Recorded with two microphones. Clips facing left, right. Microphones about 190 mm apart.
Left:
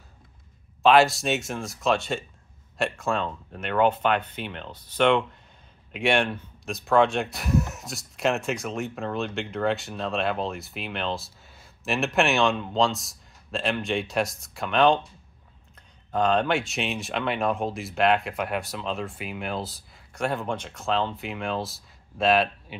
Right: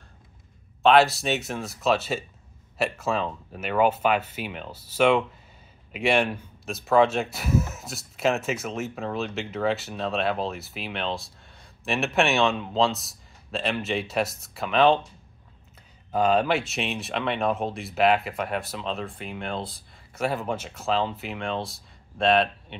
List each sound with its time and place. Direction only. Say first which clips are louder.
0.8 s speech: even; centre (ahead or behind)
16.1 s speech: right 1 dB; 5° right (ahead or behind)